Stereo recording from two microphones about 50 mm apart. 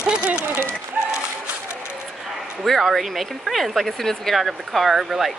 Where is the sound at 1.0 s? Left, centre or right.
Right.